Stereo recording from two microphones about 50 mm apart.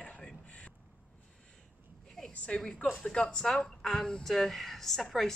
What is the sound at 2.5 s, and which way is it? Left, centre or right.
A woman's voice, left.